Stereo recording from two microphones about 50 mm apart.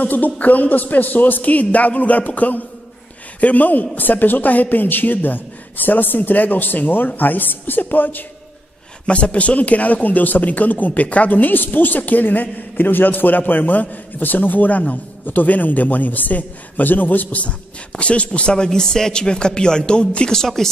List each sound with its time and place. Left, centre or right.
0.0 s speech: left
9.0 s speech: left